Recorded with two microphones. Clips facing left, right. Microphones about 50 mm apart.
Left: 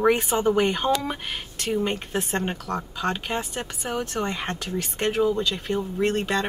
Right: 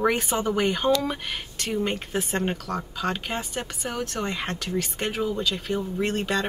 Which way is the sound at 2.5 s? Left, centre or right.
Left.